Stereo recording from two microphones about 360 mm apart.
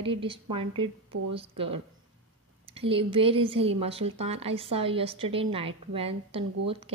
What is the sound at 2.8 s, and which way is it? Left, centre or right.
A woman's voice, centre.